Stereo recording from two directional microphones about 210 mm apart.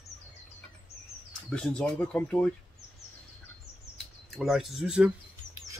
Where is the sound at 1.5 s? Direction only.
5° left (ahead or behind).